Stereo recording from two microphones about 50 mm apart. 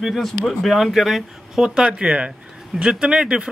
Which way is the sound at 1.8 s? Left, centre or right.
Right.